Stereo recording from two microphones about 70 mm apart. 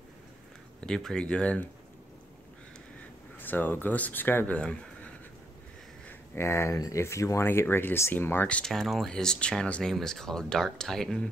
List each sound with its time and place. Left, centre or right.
0.7 s speech: centre
3.3 s speech: left
4.6 s a sound: centre
6.3 s speech: left
7.4 s speech: left
8.6 s speech: centre